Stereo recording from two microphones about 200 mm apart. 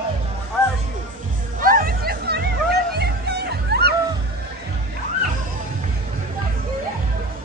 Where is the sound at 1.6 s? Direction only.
45° right (ahead or behind).